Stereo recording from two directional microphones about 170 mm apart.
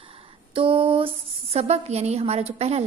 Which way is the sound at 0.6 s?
30° right (ahead or behind).